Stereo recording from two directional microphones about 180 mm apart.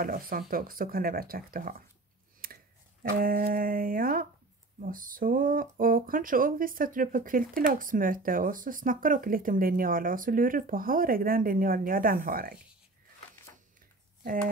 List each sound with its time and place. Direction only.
0.0 s speech: 50° right (ahead or behind)